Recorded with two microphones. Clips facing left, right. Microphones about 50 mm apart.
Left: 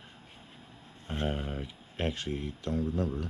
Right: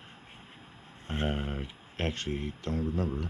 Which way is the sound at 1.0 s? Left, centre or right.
Right.